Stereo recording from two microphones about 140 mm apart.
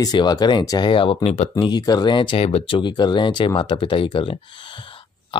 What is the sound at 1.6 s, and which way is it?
Speech, 30° left (ahead or behind).